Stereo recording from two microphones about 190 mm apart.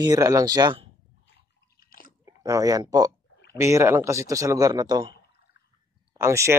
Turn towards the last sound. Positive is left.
turn(degrees=-15)  # may be behind; listen again after turning